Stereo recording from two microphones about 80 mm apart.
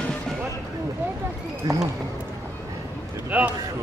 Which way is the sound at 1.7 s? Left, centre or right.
Right.